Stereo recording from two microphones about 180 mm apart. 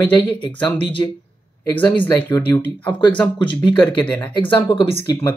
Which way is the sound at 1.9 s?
10° left (ahead or behind).